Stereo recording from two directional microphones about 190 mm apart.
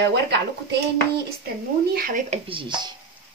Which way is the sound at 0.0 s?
65° right (ahead or behind).